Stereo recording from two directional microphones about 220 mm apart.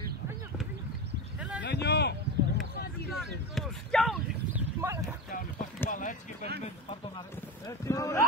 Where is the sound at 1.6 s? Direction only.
50° left (ahead or behind).